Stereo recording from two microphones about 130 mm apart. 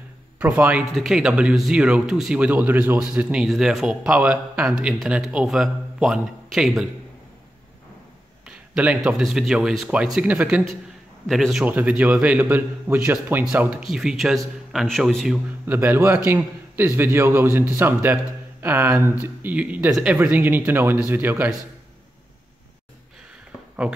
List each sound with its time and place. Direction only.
0.4 s speech: 10° right (ahead or behind)
8.5 s speech: 10° right (ahead or behind)
11.6 s speech: 10° right (ahead or behind)
15.4 s a man's voice: 15° right (ahead or behind)